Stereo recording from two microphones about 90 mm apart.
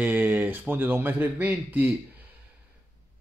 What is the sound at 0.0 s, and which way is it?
Speech, 20° right (ahead or behind).